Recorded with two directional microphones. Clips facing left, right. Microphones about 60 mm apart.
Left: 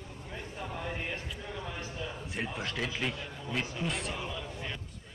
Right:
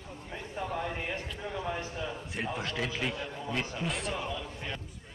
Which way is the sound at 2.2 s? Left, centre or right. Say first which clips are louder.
Right 1 dB; centre.